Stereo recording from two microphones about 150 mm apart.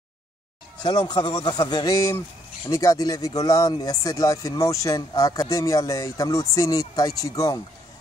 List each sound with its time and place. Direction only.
0.8 s speech: 25° left (ahead or behind)